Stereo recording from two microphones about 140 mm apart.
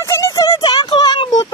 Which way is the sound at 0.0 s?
20° left (ahead or behind).